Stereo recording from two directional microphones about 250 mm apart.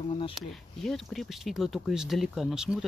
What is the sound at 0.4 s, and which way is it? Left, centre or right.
Speech, centre.